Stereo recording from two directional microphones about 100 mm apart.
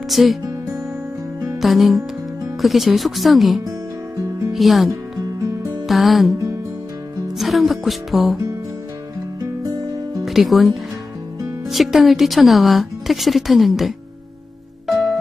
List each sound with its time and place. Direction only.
0.1 s speech: centre (ahead or behind)
1.6 s speech: centre (ahead or behind)
4.5 s music: centre (ahead or behind)
5.9 s speech: centre (ahead or behind)
7.3 s speech: centre (ahead or behind)
9.4 s music: 40° right (ahead or behind)
10.2 s speech: centre (ahead or behind)